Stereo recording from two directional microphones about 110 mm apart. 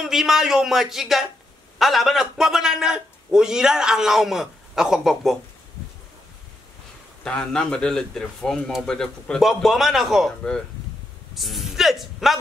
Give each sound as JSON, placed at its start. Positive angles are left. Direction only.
{"t": 0.0, "sound": "a man's voice", "side_deg": -5}
{"t": 7.2, "sound": "a man's voice", "side_deg": 5}